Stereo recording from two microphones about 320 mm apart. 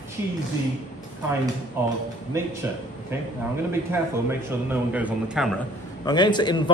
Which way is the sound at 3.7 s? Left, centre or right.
Centre.